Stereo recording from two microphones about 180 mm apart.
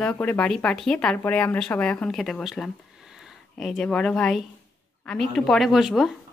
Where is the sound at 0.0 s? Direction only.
5° left (ahead or behind).